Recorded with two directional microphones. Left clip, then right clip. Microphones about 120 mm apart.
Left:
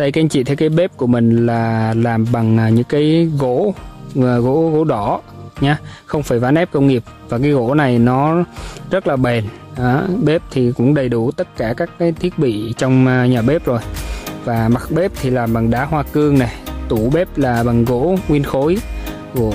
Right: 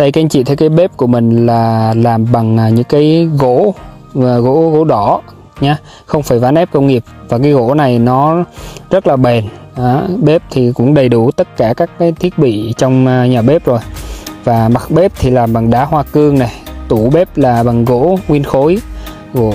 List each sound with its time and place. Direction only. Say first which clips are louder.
0.0 s speech: right 6 dB; 35° right (ahead or behind)
11.0 s speech: right 8 dB; 50° right (ahead or behind); by 13.8 s 25° right (ahead or behind)
14.4 s speech: right 7 dB; 40° right (ahead or behind)